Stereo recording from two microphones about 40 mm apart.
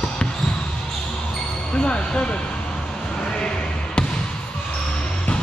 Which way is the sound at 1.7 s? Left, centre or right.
Left.